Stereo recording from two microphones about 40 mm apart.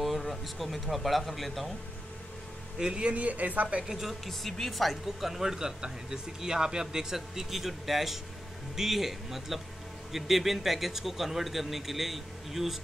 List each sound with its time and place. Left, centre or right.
0.0 s a man's voice: centre
3.0 s speech: right
3.8 s speech: centre
4.3 s a man's voice: centre